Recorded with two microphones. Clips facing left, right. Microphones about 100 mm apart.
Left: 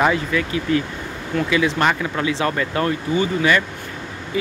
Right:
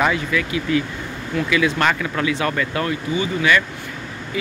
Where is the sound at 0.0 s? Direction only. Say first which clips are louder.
Left 1 dB; 30° left (ahead or behind).